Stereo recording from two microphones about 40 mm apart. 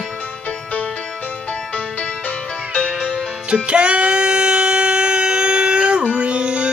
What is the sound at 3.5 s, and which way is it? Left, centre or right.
Music, right.